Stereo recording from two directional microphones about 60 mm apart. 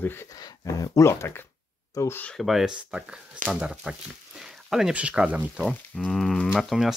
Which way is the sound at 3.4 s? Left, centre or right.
Right.